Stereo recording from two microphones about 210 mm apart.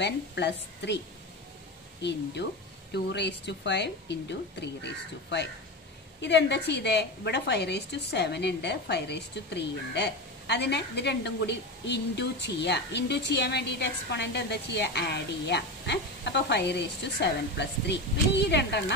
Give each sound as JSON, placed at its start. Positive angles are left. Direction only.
{"t": 0.0, "sound": "a woman's voice", "side_deg": 55}